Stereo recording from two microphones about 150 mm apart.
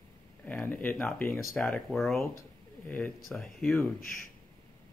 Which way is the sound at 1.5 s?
Centre (ahead or behind).